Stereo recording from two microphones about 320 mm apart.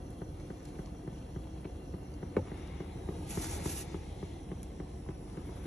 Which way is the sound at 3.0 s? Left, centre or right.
Centre.